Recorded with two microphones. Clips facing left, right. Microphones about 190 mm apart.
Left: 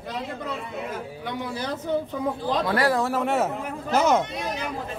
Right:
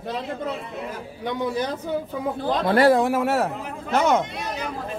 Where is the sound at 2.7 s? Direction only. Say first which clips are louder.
Right 8 dB; 25° right (ahead or behind).